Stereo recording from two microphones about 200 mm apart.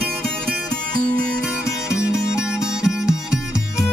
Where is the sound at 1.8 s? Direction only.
5° right (ahead or behind).